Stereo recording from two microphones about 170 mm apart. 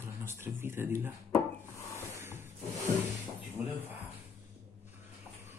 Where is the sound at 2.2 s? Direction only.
15° right (ahead or behind).